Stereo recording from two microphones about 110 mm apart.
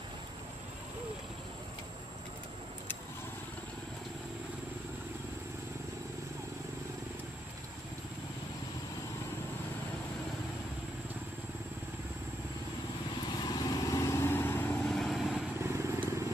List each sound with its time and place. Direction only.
13.4 s vehicle: 35° left (ahead or behind); by 14.8 s 20° left (ahead or behind)
14.9 s vehicle: centre (ahead or behind)
15.6 s vehicle: 20° right (ahead or behind)